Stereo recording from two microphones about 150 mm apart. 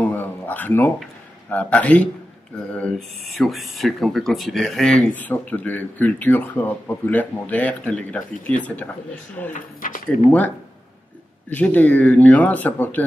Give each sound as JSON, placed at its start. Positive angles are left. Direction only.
{"t": 0.0, "sound": "a sound", "side_deg": 10}
{"t": 1.5, "sound": "speech", "side_deg": 10}
{"t": 9.5, "sound": "speech", "side_deg": 65}
{"t": 11.5, "sound": "speech", "side_deg": 10}